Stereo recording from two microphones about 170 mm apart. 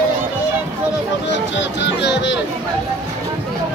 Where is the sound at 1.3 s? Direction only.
90° left.